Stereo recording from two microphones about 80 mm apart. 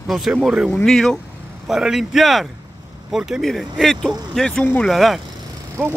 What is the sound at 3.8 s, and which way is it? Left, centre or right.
Speech, centre.